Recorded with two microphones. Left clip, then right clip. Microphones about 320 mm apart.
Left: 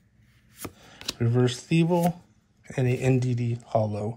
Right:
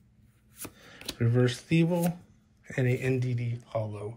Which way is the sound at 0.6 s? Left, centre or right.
Centre.